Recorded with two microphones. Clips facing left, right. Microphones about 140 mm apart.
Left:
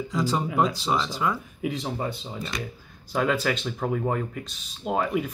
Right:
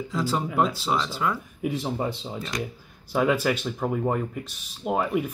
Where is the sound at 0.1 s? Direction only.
5° right (ahead or behind).